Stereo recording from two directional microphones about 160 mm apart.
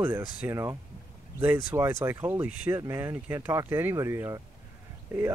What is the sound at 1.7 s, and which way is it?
Speech, 15° right (ahead or behind).